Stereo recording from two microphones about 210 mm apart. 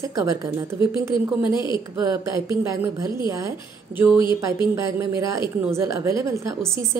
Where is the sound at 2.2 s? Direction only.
15° right (ahead or behind).